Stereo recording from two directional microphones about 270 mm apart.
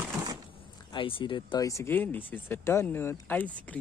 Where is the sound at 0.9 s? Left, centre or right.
Centre.